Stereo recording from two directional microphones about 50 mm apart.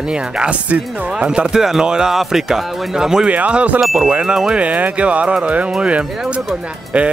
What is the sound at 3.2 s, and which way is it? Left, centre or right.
Speech, right.